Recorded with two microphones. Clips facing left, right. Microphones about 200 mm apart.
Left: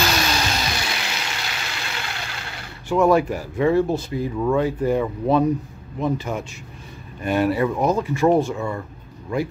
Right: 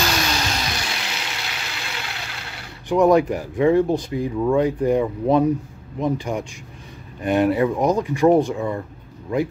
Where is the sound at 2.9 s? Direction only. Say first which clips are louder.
Right 2 dB; 15° right (ahead or behind).